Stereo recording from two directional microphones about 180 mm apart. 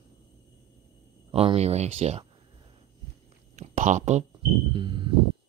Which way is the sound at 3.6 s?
45° right (ahead or behind).